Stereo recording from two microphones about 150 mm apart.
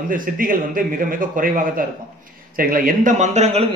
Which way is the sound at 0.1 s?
70° right (ahead or behind).